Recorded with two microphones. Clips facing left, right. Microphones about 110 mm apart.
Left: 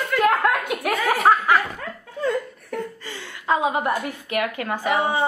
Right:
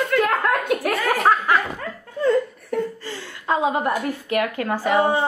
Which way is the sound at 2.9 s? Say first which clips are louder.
Right 3 dB; 15° left (ahead or behind).